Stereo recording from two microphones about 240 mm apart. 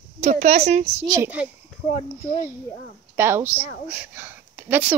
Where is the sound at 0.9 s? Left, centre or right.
Centre.